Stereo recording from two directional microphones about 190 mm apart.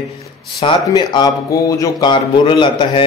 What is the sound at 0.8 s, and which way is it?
A man's voice, 20° left (ahead or behind).